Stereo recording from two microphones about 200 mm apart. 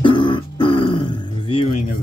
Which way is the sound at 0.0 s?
25° left (ahead or behind).